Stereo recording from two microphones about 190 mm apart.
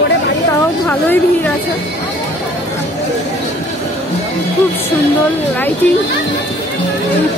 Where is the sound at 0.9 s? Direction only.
10° left (ahead or behind).